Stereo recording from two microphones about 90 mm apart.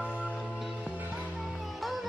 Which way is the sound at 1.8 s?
Centre (ahead or behind).